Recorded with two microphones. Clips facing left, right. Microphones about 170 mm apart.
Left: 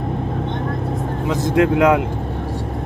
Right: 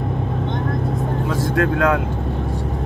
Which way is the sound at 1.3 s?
20° left (ahead or behind).